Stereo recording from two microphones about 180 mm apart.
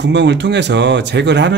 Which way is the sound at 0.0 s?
75° right (ahead or behind).